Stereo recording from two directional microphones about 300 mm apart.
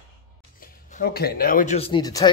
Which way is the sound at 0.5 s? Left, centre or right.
Left.